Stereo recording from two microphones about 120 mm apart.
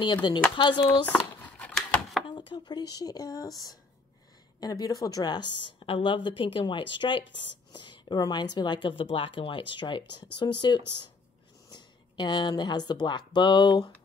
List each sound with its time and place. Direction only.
0.0 s speech: 40° left (ahead or behind)
1.0 s a sound: 10° left (ahead or behind)
2.2 s speech: 40° left (ahead or behind)
4.6 s a woman's voice: 35° left (ahead or behind)